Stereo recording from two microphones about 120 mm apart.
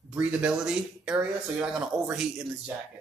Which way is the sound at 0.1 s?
10° right (ahead or behind).